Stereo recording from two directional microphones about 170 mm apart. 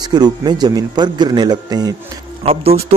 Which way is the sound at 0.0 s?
25° right (ahead or behind).